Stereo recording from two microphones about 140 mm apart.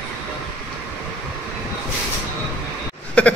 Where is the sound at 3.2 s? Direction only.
10° left (ahead or behind).